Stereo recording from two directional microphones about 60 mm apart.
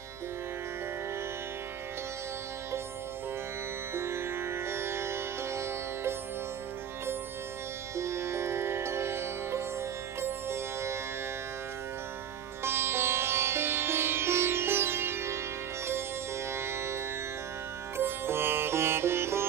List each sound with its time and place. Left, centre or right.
3.9 s music: right
7.9 s music: right
10.2 s sitar: right
12.6 s sitar: right
16.5 s music: right